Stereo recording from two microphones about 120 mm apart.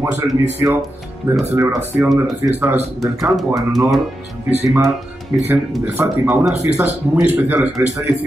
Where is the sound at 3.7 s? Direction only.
Centre (ahead or behind).